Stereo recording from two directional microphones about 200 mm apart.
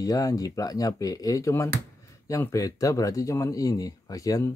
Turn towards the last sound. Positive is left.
turn(degrees=15)  # may be behind; listen again after turning